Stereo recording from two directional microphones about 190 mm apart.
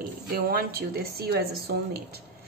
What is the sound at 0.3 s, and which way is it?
A woman's voice, 55° right (ahead or behind).